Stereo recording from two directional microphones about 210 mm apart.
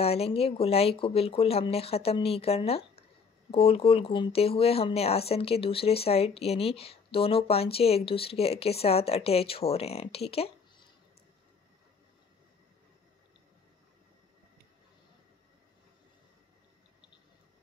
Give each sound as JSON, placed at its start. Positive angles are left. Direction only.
{"t": 0.0, "sound": "speech", "side_deg": 30}